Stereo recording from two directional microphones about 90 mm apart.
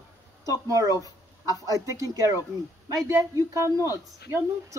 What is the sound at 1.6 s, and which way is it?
Speech, 40° right (ahead or behind).